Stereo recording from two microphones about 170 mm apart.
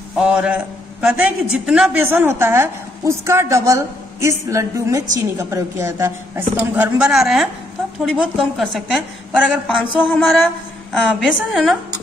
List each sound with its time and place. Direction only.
0.2 s a woman's voice: 5° right (ahead or behind)